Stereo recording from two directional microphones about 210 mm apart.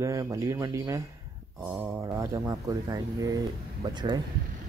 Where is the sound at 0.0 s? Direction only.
15° right (ahead or behind).